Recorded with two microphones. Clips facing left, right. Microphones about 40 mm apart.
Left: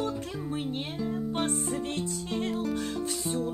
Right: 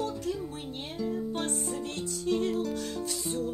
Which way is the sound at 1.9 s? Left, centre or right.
Left.